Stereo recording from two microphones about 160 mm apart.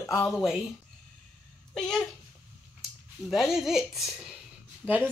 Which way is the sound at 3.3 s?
Centre (ahead or behind).